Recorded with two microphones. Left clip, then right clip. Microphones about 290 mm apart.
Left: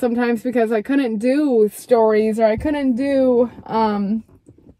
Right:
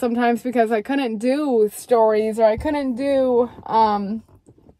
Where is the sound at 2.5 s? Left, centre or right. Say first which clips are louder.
Left 1 dB; right.